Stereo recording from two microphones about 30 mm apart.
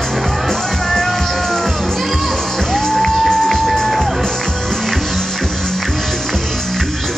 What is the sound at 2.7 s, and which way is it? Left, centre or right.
Music, centre.